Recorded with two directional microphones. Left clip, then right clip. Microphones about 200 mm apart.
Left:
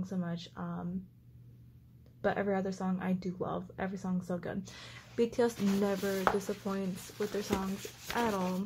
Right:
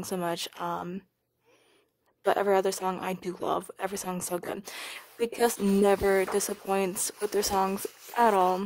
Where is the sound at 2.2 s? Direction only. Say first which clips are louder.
Right 8 dB; 50° right (ahead or behind).